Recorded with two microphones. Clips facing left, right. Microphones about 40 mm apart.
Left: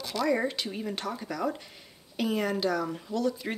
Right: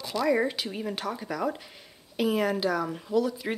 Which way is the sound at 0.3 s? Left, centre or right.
Centre.